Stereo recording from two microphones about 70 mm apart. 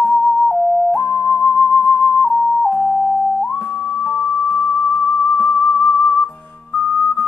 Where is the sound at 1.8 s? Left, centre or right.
Left.